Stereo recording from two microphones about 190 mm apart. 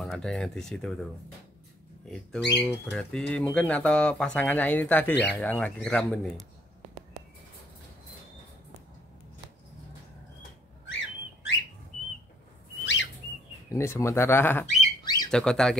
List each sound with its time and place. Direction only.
0.0 s speech: 5° left (ahead or behind)
2.0 s speech: 5° left (ahead or behind)
10.9 s bird: 75° left (ahead or behind)
12.8 s bird: 75° left (ahead or behind)
13.7 s speech: 15° left (ahead or behind)
15.0 s squawk: 20° left (ahead or behind)
15.3 s speech: 5° left (ahead or behind)